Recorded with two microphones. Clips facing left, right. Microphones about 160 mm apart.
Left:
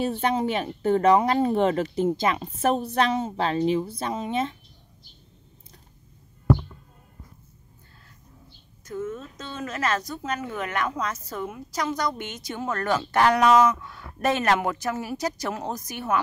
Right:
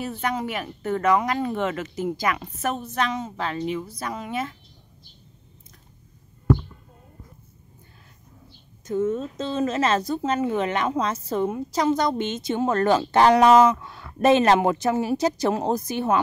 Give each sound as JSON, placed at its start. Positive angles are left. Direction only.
{"t": 0.0, "sound": "speech", "side_deg": 30}
{"t": 8.8, "sound": "a woman's voice", "side_deg": -25}